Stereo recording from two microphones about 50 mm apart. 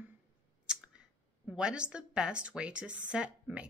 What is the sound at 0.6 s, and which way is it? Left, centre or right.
Clicking, centre.